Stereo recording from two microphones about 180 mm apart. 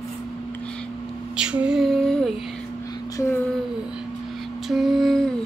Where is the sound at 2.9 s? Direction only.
20° left (ahead or behind).